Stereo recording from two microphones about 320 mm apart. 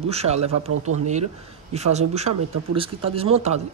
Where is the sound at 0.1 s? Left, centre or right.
Centre.